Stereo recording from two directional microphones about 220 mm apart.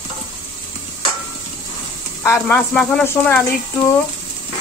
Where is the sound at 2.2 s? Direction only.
10° left (ahead or behind).